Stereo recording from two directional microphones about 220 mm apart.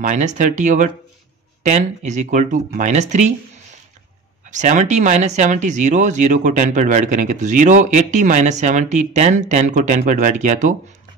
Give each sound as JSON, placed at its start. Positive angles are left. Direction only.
{"t": 0.0, "sound": "speech", "side_deg": -35}
{"t": 4.5, "sound": "speech", "side_deg": -35}